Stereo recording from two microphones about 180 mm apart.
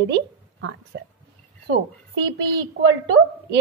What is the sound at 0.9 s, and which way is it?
Speech, 90° right.